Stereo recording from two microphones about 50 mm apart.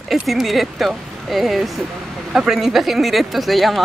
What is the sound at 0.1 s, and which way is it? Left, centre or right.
Speech, centre.